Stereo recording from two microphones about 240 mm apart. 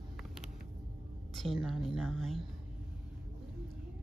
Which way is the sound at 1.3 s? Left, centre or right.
Centre.